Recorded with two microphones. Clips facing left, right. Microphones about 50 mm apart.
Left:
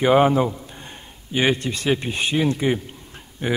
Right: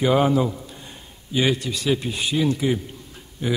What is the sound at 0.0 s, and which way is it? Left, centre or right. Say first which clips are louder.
A man's voice: left 3 dB; left.